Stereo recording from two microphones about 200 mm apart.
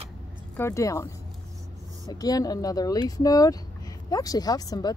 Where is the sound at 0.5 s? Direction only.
15° left (ahead or behind).